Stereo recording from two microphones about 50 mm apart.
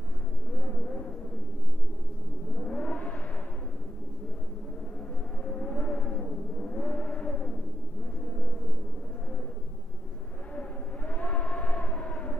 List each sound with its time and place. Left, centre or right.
0.6 s vehicle: left
2.6 s music: left
5.4 s vehicle: left
10.5 s civil defense siren: left